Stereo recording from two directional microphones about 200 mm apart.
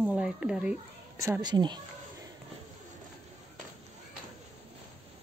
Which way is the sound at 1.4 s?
20° right (ahead or behind).